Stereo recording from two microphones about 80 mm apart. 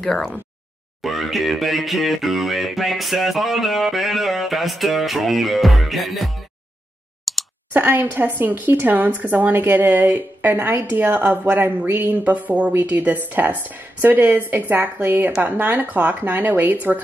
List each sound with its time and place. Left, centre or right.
0.0 s a sound: centre
7.3 s clicking: centre
7.7 s speech: right